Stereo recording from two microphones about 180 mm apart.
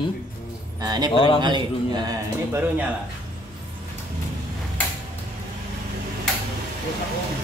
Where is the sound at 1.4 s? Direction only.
25° right (ahead or behind).